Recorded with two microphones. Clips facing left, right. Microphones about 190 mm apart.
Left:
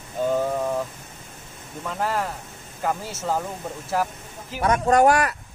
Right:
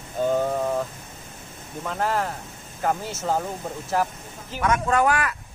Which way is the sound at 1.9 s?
5° left (ahead or behind).